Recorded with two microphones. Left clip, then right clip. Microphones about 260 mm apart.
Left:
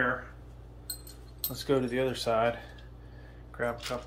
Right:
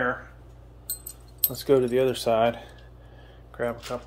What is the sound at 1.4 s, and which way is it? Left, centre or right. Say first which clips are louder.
Speech: right 7 dB; right.